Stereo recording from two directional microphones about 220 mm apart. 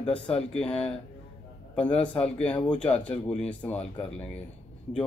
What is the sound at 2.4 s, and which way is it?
Speech, 5° left (ahead or behind).